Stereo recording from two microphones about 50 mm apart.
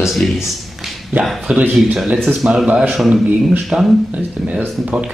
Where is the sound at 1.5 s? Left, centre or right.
Right.